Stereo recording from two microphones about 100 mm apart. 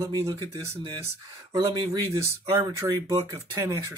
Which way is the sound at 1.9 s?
30° right (ahead or behind).